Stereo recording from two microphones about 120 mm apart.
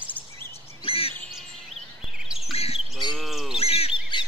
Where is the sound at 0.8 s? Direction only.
50° left (ahead or behind).